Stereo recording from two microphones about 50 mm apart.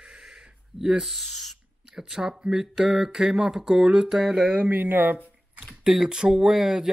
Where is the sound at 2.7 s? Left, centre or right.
Centre.